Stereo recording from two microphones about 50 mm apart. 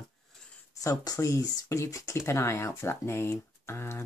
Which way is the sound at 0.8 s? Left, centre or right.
Left.